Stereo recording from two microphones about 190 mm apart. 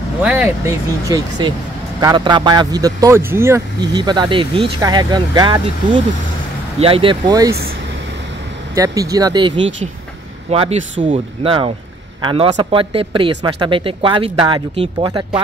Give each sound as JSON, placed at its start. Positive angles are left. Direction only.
{"t": 0.2, "sound": "speech", "side_deg": -10}
{"t": 6.8, "sound": "speech", "side_deg": -30}
{"t": 8.7, "sound": "speech", "side_deg": -20}
{"t": 10.5, "sound": "speech", "side_deg": -35}